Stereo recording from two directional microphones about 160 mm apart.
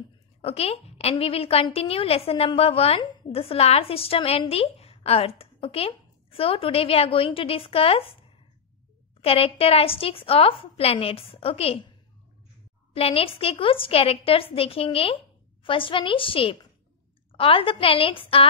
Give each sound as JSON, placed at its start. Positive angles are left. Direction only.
{"t": 0.4, "sound": "a woman's voice", "side_deg": 40}
{"t": 12.9, "sound": "a woman's voice", "side_deg": 35}